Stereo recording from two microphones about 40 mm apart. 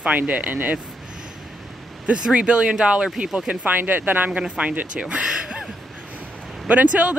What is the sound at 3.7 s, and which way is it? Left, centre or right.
Speech, right.